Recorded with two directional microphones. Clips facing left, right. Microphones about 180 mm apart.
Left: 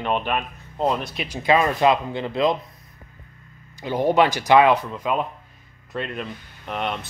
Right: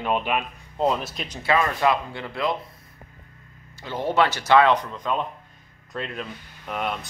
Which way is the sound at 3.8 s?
15° left (ahead or behind).